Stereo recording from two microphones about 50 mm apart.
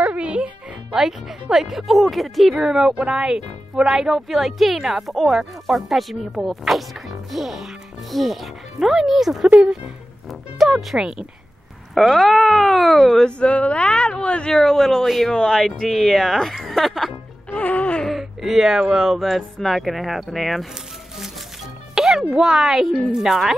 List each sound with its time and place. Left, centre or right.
0.0 s music: right
0.9 s speech: centre
2.9 s speech: right; by 9.5 s centre
11.0 s speech: centre
11.9 s speech: centre
13.2 s speech: left
14.5 s speech: centre
17.5 s music: left
18.0 s speech: centre
21.9 s music: centre
22.3 s speech: centre